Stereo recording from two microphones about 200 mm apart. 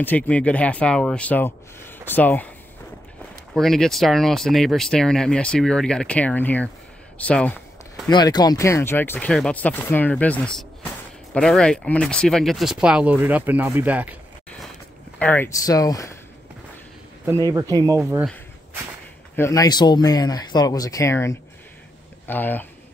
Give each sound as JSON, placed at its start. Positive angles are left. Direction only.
{"t": 0.0, "sound": "speech", "side_deg": 5}
{"t": 3.5, "sound": "speech", "side_deg": 0}
{"t": 8.1, "sound": "speech", "side_deg": 20}
{"t": 15.1, "sound": "speech", "side_deg": 10}
{"t": 17.5, "sound": "speech", "side_deg": -20}
{"t": 19.3, "sound": "speech", "side_deg": 15}